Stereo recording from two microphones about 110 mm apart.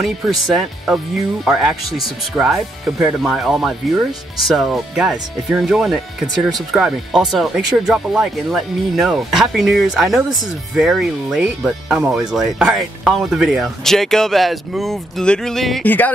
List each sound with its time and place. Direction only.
0.0 s speech: 5° right (ahead or behind)
15.8 s speech: 15° left (ahead or behind)